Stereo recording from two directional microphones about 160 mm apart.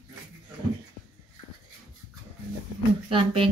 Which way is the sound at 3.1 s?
35° right (ahead or behind).